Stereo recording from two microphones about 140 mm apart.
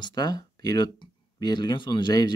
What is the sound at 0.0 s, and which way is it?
Speech, 30° left (ahead or behind).